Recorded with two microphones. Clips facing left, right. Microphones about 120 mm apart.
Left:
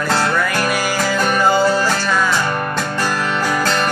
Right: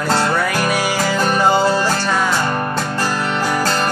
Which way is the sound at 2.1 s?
40° right (ahead or behind).